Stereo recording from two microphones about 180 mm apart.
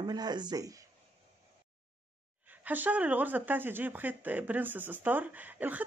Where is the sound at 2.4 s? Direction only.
10° right (ahead or behind).